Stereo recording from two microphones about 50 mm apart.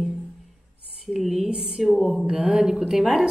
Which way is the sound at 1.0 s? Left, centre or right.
Centre.